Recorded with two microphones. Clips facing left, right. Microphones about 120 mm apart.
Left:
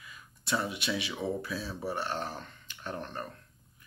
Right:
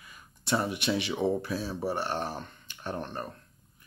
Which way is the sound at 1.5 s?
40° right (ahead or behind).